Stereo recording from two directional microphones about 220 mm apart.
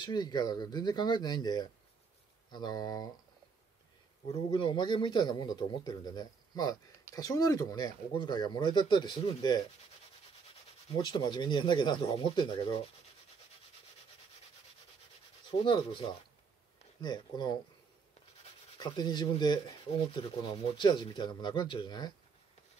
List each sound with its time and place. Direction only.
0.0 s a man's voice: 20° left (ahead or behind)
4.5 s a man's voice: 20° left (ahead or behind)
11.1 s a man's voice: 20° left (ahead or behind)
15.6 s a man's voice: 20° left (ahead or behind)
18.8 s a man's voice: 20° left (ahead or behind)